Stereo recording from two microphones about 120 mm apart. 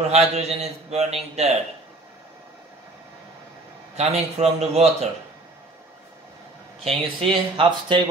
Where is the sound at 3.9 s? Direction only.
60° right (ahead or behind).